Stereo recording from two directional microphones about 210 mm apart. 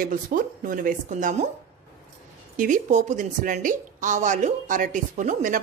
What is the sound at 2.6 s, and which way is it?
Speech, 35° right (ahead or behind).